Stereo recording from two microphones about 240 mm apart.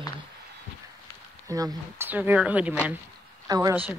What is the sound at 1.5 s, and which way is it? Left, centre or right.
Speech, centre.